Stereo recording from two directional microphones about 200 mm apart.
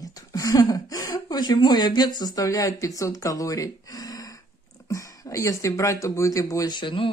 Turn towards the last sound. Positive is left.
turn(degrees=25)  # may be behind; listen again after turning